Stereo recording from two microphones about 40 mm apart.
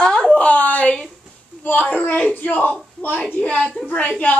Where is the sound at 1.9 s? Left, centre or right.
Left.